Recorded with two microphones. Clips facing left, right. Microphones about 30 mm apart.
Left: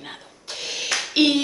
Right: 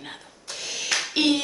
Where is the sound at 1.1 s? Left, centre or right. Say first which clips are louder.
Left 4 dB; centre.